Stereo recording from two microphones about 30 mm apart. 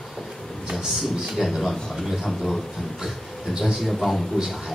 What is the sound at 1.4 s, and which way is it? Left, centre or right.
Speech, centre.